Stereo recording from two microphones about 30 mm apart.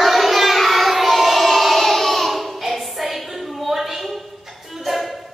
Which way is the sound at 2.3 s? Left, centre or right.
Centre.